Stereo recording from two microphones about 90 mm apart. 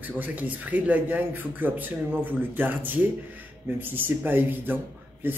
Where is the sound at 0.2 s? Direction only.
15° right (ahead or behind).